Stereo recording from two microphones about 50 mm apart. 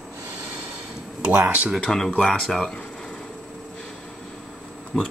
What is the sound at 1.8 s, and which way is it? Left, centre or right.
Speech, centre.